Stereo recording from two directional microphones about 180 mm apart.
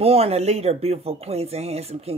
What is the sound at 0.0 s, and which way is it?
Speech, 35° right (ahead or behind).